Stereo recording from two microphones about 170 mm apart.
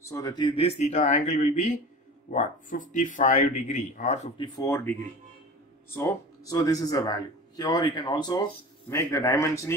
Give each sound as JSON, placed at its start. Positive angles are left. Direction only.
{"t": 0.1, "sound": "speech", "side_deg": 25}
{"t": 4.4, "sound": "speech", "side_deg": 20}
{"t": 5.9, "sound": "speech", "side_deg": 20}